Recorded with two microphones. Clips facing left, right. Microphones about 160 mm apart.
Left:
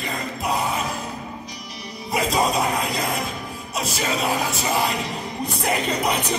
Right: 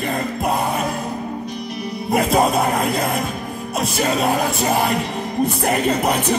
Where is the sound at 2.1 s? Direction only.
55° right (ahead or behind).